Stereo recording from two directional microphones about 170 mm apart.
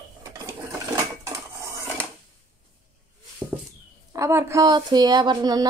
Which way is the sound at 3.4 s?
15° right (ahead or behind).